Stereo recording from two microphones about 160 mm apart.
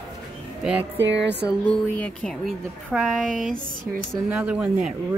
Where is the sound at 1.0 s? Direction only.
90° right.